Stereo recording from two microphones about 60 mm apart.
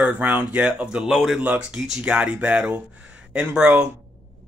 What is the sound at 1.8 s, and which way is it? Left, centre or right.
Speech, centre.